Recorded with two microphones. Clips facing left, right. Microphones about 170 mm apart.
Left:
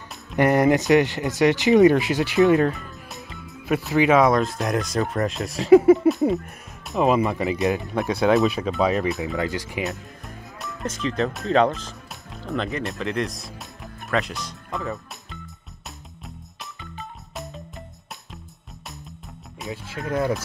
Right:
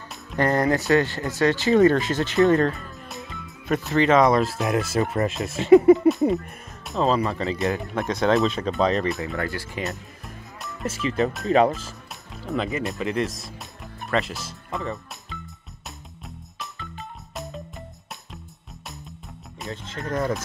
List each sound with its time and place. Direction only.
0.4 s speech: 15° left (ahead or behind)
2.7 s music: centre (ahead or behind)
3.9 s speech: 10° left (ahead or behind)
7.0 s speech: 15° left (ahead or behind)
8.0 s speech: 5° left (ahead or behind)
9.4 s speech: 15° left (ahead or behind)
9.8 s speech: centre (ahead or behind)
17.4 s music: centre (ahead or behind)
19.6 s speech: 10° left (ahead or behind)